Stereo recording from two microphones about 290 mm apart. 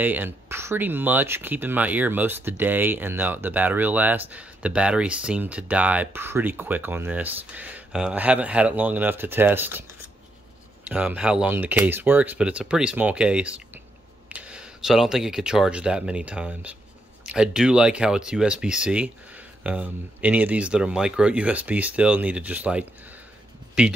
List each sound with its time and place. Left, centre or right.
0.0 s speech: centre
10.9 s speech: centre